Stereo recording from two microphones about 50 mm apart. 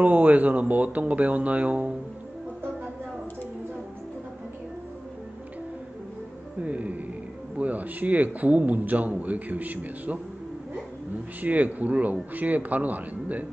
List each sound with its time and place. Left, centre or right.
0.0 s a man's voice: right
6.6 s a man's voice: right
11.4 s a man's voice: right